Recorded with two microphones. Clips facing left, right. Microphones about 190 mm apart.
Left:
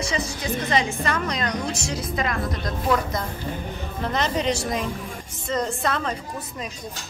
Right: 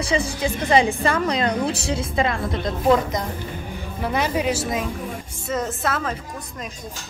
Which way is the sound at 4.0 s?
10° right (ahead or behind).